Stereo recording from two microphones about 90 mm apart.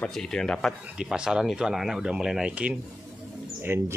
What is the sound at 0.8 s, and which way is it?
Speech, 10° right (ahead or behind).